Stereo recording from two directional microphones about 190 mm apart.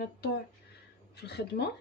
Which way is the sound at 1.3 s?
60° left (ahead or behind).